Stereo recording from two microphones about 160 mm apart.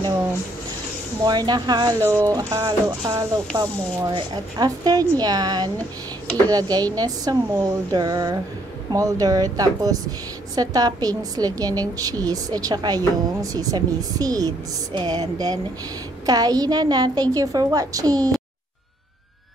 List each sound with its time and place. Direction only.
1.2 s a woman's voice: 25° right (ahead or behind)